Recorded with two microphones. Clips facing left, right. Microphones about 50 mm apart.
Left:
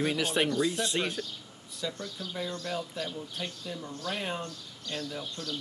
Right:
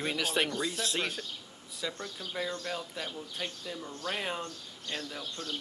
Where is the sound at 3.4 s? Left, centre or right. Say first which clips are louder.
Right 1 dB; right.